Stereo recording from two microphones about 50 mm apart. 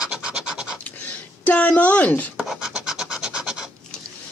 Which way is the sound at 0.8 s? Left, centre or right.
Left.